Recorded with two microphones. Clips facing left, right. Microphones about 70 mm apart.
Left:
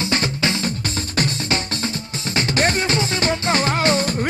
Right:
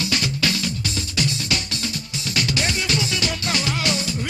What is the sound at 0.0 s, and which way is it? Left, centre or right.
Music, left.